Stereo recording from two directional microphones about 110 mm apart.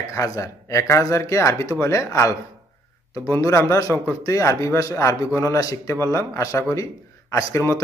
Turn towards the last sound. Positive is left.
turn(degrees=25)  # may be behind; listen again after turning